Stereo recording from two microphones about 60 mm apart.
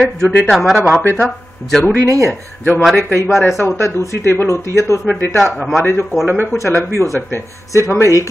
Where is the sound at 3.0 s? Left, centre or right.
Left.